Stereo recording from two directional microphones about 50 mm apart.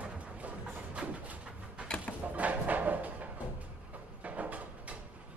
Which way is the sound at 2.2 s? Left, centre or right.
Right.